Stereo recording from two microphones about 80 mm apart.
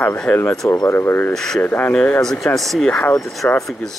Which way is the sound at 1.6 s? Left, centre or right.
Centre.